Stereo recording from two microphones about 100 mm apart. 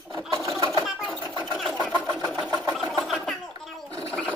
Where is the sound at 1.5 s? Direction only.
Centre (ahead or behind).